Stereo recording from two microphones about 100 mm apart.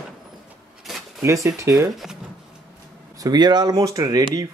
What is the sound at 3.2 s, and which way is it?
Speech, 45° right (ahead or behind).